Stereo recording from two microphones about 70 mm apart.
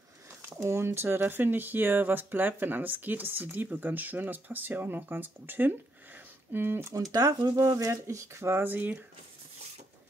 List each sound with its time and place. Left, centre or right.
0.5 s speech: right
6.9 s speech: right